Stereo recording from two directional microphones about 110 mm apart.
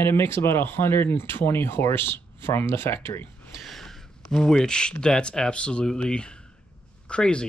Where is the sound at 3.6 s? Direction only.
Centre (ahead or behind).